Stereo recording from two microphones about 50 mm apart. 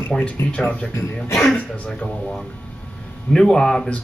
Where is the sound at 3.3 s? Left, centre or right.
Centre.